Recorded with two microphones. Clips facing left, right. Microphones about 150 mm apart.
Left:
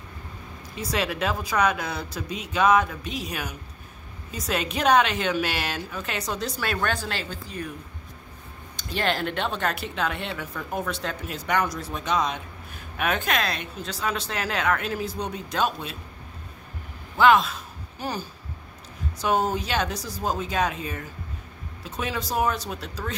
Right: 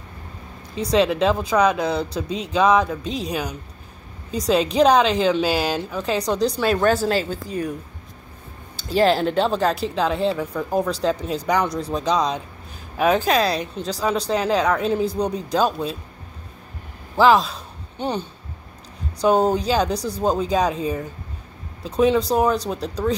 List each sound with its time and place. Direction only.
0.7 s speech: 30° right (ahead or behind)
6.9 s speech: 40° right (ahead or behind)
8.9 s speech: 35° right (ahead or behind)
17.2 s speech: 30° right (ahead or behind)
19.2 s speech: 30° right (ahead or behind)
21.8 s speech: 35° right (ahead or behind)